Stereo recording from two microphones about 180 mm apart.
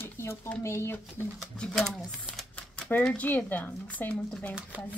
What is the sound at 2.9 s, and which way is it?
Speech, 10° left (ahead or behind).